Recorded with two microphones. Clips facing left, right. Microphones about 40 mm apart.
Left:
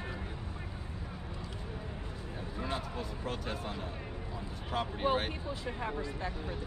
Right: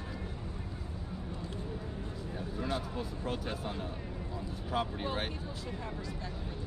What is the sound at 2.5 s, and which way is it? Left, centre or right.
Speech, left.